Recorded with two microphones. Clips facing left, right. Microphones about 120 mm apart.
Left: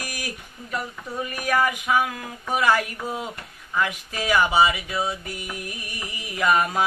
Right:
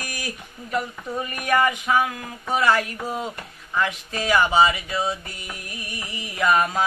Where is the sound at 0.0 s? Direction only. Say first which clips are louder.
Even; 15° left (ahead or behind).